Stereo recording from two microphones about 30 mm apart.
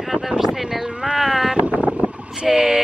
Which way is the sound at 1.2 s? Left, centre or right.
Centre.